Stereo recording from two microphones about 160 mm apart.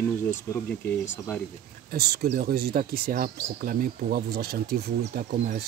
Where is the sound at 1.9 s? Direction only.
75° right (ahead or behind).